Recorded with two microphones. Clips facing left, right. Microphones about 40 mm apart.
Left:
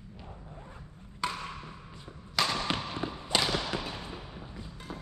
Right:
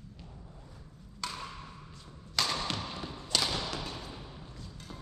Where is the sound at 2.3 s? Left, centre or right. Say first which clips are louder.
Left 3 dB; centre.